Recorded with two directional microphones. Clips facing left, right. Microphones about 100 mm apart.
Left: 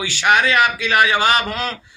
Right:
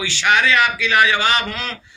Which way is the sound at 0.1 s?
45° left (ahead or behind).